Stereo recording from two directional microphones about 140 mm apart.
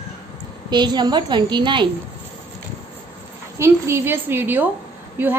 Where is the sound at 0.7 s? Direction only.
30° right (ahead or behind).